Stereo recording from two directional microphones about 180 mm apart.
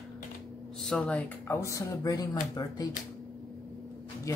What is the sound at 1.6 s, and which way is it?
Speech, 15° left (ahead or behind).